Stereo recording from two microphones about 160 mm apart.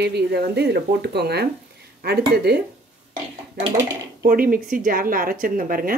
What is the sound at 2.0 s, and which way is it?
Speech, 80° right.